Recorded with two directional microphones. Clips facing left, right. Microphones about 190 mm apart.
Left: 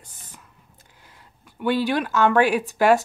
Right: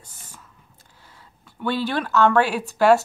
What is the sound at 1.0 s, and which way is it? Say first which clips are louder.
Speech: right 1 dB; 15° left (ahead or behind).